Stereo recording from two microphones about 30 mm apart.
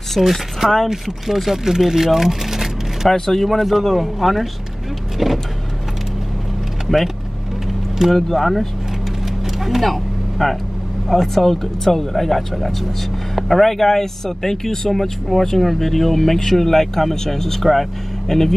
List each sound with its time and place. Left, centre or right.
0.2 s speech: centre
0.6 s speech: right
1.2 s speech: centre
3.1 s speech: centre
8.3 s speech: centre
9.6 s vehicle: centre
11.1 s speech: centre
17.6 s speech: centre